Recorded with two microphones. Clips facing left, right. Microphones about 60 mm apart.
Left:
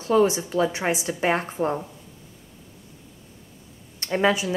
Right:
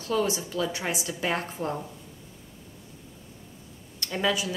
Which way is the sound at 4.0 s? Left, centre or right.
Left.